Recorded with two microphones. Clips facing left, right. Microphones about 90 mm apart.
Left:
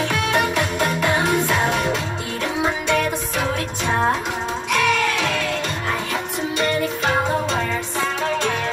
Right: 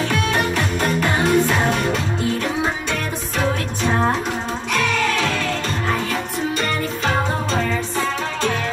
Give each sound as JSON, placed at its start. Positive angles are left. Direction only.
{"t": 0.1, "sound": "music", "side_deg": 15}
{"t": 4.7, "sound": "music", "side_deg": 15}